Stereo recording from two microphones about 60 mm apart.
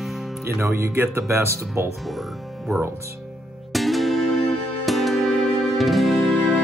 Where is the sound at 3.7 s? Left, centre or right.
Centre.